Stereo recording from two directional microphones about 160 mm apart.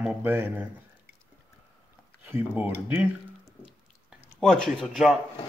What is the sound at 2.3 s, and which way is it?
Speech, 10° right (ahead or behind).